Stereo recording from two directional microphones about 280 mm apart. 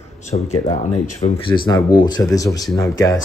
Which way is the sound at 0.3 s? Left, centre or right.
Centre.